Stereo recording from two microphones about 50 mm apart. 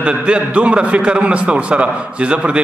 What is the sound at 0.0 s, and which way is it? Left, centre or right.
A man's voice, right.